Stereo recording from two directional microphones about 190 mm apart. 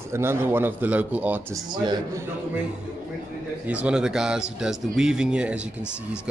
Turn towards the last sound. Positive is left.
turn(degrees=-5)  # may be behind; listen again after turning